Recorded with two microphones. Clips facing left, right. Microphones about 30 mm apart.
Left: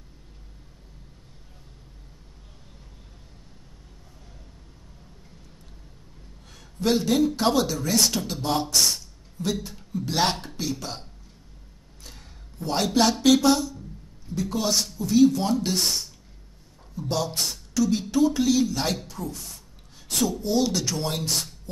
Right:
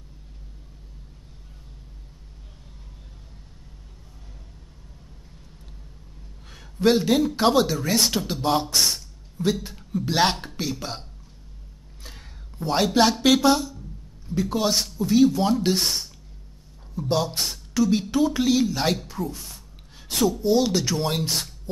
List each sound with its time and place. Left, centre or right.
6.5 s speech: right
12.0 s a sound: centre
13.2 s speech: right
17.1 s speech: centre